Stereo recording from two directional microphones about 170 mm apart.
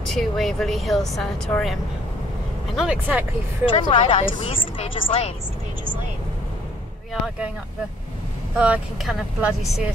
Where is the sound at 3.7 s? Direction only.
30° left (ahead or behind).